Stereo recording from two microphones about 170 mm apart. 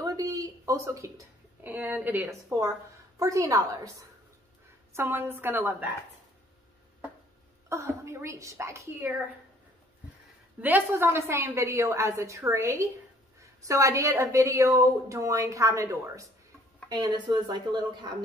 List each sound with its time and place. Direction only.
0.0 s a woman's voice: 20° right (ahead or behind)
4.9 s a woman's voice: 15° right (ahead or behind)
7.7 s a woman's voice: 15° right (ahead or behind)
10.6 s a woman's voice: 10° right (ahead or behind)